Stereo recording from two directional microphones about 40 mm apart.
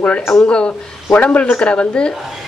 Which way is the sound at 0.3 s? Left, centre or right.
Left.